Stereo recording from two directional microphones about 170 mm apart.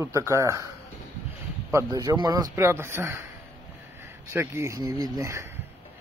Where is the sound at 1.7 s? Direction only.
20° right (ahead or behind).